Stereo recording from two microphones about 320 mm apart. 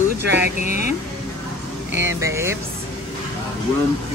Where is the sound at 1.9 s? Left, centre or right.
Left.